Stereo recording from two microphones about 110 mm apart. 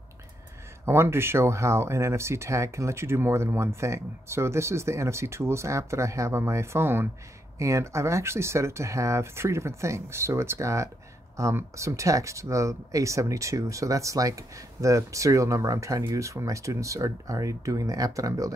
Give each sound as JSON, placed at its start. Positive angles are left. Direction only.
{"t": 0.8, "sound": "speech", "side_deg": -20}